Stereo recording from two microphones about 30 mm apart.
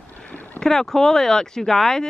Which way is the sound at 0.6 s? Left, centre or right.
Centre.